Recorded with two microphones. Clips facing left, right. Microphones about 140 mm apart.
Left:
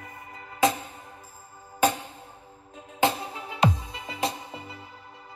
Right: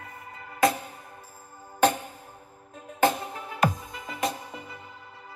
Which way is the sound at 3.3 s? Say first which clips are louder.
Even; 50° right (ahead or behind).